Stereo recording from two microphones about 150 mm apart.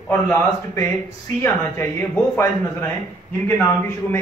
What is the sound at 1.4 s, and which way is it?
A man's voice, 15° left (ahead or behind).